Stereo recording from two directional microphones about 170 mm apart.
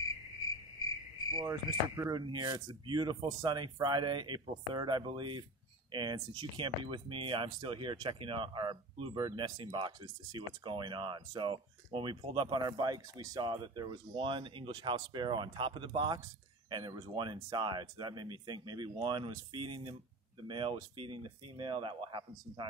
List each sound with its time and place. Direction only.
1.3 s speech: 20° right (ahead or behind)